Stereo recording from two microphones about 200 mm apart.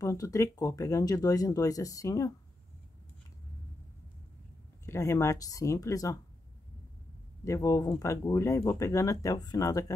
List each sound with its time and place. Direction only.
0.0 s speech: 15° left (ahead or behind)
4.8 s speech: 15° left (ahead or behind)
7.4 s speech: 15° left (ahead or behind)